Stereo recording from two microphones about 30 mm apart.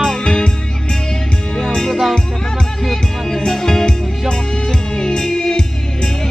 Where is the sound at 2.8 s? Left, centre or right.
Centre.